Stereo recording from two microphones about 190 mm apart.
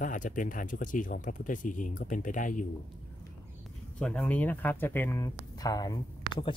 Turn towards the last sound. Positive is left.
turn(degrees=20)  # may be behind; listen again after turning